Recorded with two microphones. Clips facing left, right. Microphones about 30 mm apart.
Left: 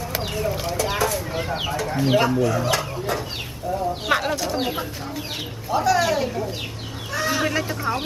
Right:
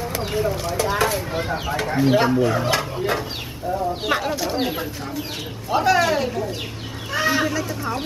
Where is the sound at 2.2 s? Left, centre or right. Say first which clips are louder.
Right 1 dB; right.